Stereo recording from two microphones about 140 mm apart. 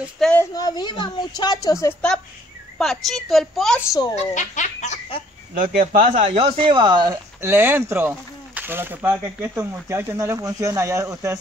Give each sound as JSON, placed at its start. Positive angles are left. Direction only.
{"t": 0.4, "sound": "a woman's voice", "side_deg": 30}
{"t": 2.8, "sound": "a woman's voice", "side_deg": 0}
{"t": 3.8, "sound": "a woman's voice", "side_deg": 25}
{"t": 4.1, "sound": "speech", "side_deg": 55}
{"t": 5.8, "sound": "speech", "side_deg": -70}
{"t": 6.6, "sound": "speech", "side_deg": -35}
{"t": 7.4, "sound": "speech", "side_deg": -15}